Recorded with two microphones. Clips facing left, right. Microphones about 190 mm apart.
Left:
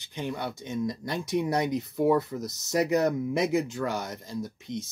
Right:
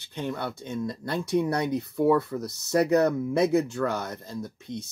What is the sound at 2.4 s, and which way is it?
Speech, 65° right (ahead or behind).